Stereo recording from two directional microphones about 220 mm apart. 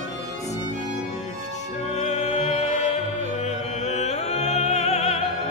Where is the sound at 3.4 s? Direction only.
30° left (ahead or behind).